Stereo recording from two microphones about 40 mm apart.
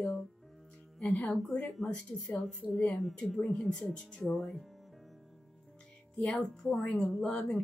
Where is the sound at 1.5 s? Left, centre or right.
Centre.